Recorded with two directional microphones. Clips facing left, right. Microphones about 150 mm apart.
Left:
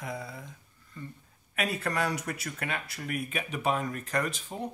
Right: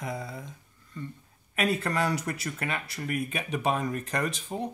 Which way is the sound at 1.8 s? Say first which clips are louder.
Right 2 dB; 30° right (ahead or behind).